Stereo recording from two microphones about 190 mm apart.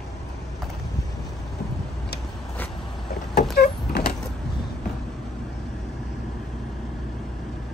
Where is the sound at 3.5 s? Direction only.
55° left (ahead or behind).